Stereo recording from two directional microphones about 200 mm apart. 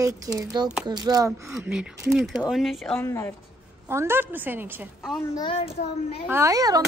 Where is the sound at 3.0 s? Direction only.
10° left (ahead or behind).